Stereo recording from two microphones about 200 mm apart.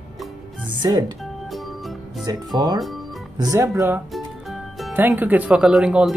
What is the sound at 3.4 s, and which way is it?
Speech, 15° right (ahead or behind).